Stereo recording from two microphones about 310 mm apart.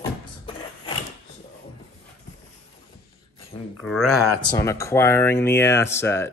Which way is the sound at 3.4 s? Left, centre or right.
Left.